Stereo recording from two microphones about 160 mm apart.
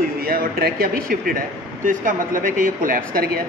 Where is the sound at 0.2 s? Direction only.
65° right (ahead or behind).